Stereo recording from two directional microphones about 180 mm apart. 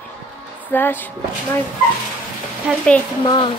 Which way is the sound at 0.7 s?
10° left (ahead or behind).